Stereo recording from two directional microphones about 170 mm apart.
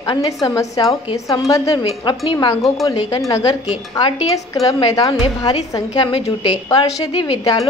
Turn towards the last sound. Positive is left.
turn(degrees=25)  # may be behind; listen again after turning